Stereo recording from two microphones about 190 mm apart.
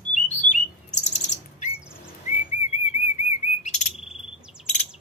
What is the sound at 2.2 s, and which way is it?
Bird, 35° left (ahead or behind).